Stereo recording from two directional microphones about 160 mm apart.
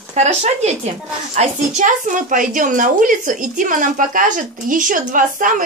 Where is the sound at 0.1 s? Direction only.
40° right (ahead or behind).